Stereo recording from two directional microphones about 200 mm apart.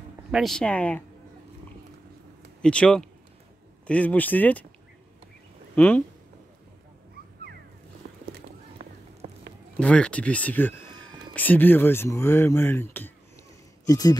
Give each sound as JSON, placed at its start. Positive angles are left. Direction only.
{"t": 0.3, "sound": "speech", "side_deg": 0}
{"t": 2.6, "sound": "speech", "side_deg": 5}
{"t": 5.8, "sound": "speech", "side_deg": 5}
{"t": 9.8, "sound": "speech", "side_deg": 5}